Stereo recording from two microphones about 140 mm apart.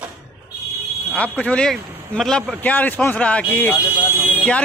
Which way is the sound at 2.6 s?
10° left (ahead or behind).